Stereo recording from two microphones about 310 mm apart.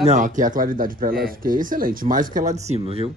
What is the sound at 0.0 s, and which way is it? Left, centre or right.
Speech, right.